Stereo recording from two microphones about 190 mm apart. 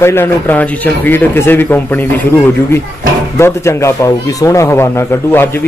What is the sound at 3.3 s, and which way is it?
Speech, 15° left (ahead or behind).